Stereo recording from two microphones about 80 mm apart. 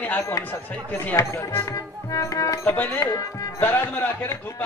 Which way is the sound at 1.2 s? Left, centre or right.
Left.